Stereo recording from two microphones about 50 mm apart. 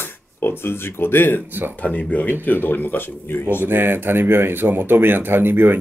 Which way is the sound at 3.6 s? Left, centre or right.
Right.